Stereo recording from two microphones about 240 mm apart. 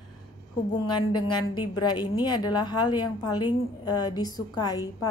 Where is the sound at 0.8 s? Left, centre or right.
Centre.